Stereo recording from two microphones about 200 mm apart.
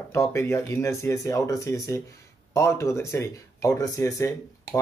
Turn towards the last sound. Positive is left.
turn(degrees=15)  # may be behind; listen again after turning